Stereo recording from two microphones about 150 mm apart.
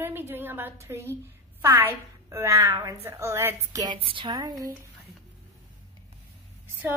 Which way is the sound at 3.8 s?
35° right (ahead or behind).